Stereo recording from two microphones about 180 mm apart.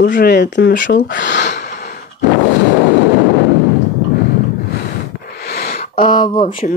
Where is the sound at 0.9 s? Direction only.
65° left (ahead or behind).